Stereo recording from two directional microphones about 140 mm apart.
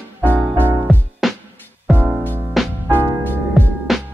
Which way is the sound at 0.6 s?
15° right (ahead or behind).